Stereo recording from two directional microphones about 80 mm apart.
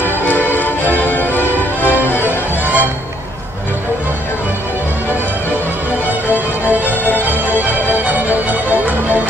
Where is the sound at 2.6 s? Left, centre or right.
Right.